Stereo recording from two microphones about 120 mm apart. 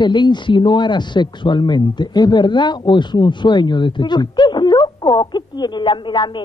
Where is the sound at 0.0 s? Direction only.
40° left (ahead or behind).